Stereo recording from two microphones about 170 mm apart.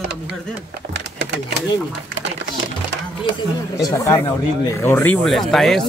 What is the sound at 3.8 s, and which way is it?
Speech, 20° left (ahead or behind).